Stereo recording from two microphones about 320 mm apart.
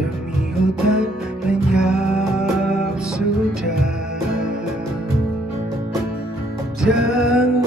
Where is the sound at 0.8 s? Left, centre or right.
Centre.